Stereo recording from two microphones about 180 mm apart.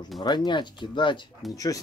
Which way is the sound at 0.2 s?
25° left (ahead or behind).